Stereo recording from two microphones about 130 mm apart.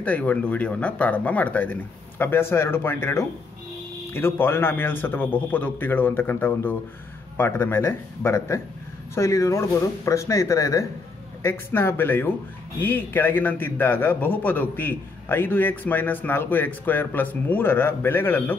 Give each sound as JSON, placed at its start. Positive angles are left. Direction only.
{"t": 0.0, "sound": "a man's voice", "side_deg": 10}